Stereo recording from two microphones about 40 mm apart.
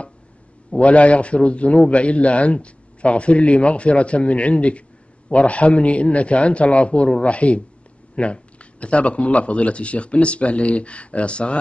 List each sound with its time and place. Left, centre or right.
0.7 s a man's voice: left